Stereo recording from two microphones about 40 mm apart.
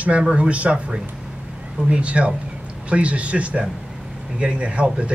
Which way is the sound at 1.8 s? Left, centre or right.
Right.